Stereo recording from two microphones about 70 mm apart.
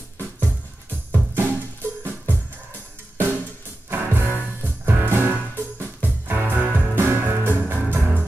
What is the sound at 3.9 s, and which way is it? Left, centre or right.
Music, right.